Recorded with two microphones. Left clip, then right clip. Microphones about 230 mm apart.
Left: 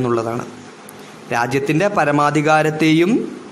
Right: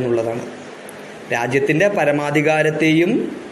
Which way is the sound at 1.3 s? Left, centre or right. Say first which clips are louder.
Even; left.